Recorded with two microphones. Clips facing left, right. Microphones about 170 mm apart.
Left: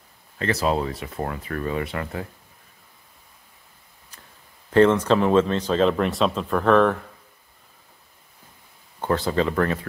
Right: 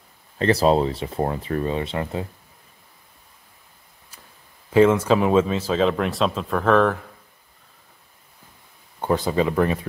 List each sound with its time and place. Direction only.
0.4 s speech: 30° right (ahead or behind)
4.6 s speech: 10° right (ahead or behind)
9.0 s speech: 15° right (ahead or behind)